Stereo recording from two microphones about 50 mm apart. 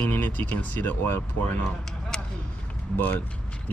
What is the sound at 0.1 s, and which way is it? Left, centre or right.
Speech, left.